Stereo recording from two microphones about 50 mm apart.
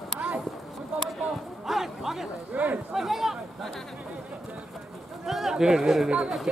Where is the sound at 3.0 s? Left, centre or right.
Centre.